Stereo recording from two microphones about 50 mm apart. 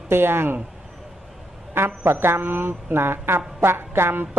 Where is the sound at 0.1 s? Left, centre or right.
Right.